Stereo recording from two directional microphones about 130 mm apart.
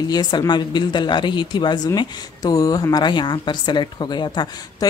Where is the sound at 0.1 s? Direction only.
30° left (ahead or behind).